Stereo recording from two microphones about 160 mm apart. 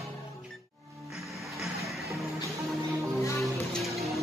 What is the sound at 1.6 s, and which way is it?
Music, centre (ahead or behind).